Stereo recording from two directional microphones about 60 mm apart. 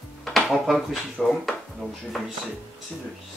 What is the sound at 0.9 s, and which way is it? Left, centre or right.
Speech, centre.